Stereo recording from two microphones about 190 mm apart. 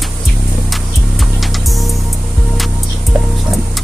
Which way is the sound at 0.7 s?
Centre (ahead or behind).